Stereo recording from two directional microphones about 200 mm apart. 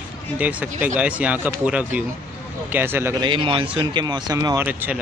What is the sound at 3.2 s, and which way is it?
Speech, 25° right (ahead or behind).